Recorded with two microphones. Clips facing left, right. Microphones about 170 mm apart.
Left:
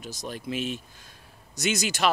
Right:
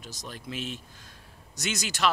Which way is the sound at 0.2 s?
15° left (ahead or behind).